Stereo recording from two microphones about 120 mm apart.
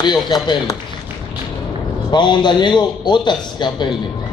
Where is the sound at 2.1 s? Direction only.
40° left (ahead or behind).